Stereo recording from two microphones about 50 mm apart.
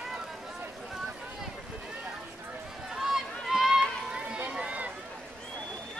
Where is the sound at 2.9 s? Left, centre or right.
Centre.